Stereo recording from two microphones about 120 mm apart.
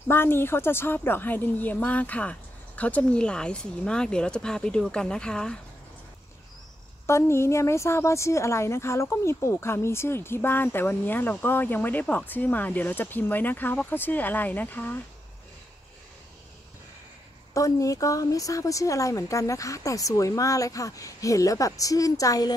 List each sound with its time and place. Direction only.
0.1 s a woman's voice: 20° left (ahead or behind)
7.1 s a woman's voice: 20° left (ahead or behind)
17.6 s speech: 25° left (ahead or behind)